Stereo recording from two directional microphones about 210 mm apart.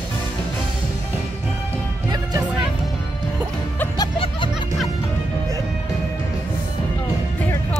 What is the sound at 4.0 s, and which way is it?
Music, 25° left (ahead or behind).